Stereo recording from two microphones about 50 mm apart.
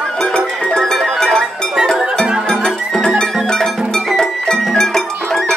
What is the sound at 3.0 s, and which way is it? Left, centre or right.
Music, centre.